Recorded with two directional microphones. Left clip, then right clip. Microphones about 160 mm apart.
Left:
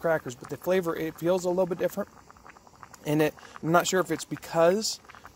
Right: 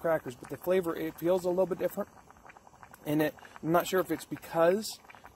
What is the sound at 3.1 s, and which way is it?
Speech, 55° left (ahead or behind).